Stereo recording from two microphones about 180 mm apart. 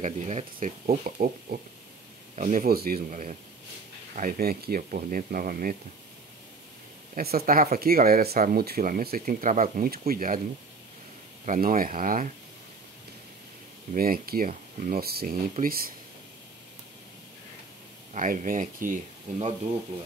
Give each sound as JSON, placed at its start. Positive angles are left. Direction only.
{"t": 0.0, "sound": "speech", "side_deg": -40}
{"t": 7.2, "sound": "speech", "side_deg": -55}
{"t": 11.4, "sound": "speech", "side_deg": -50}
{"t": 13.9, "sound": "speech", "side_deg": -55}
{"t": 18.1, "sound": "speech", "side_deg": -45}